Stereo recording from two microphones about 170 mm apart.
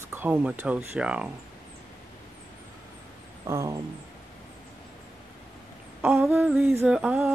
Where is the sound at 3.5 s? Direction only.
15° right (ahead or behind).